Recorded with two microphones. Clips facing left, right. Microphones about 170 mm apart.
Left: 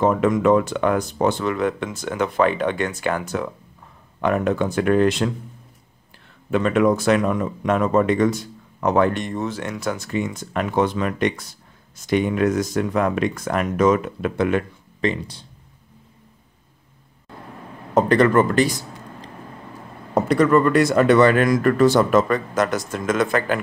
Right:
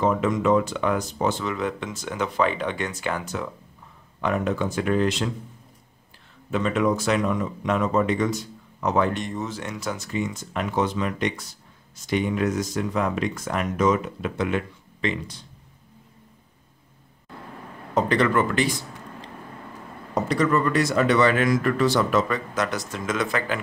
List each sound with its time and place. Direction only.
0.0 s speech: 55° left (ahead or behind)
6.5 s speech: 60° left (ahead or behind); by 15.4 s 35° left (ahead or behind)
17.9 s speech: 50° left (ahead or behind)
20.2 s speech: 55° left (ahead or behind)